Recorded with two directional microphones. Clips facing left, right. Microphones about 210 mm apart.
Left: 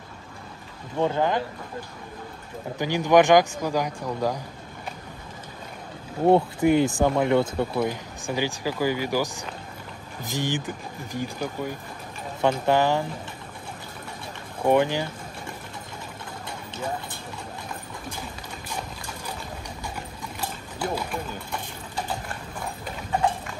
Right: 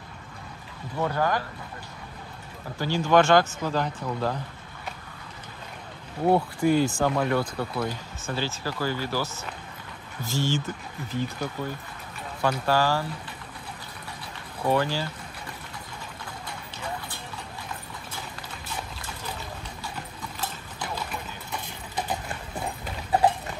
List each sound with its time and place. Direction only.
0.9 s speech: 20° left (ahead or behind)
2.8 s speech: 15° left (ahead or behind)
6.2 s speech: 20° left (ahead or behind)
14.6 s speech: 20° left (ahead or behind)
20.3 s horse: 10° left (ahead or behind)